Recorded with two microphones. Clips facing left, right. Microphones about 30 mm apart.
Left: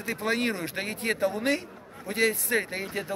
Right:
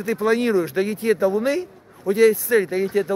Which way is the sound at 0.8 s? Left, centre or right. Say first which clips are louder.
Right 8 dB; left.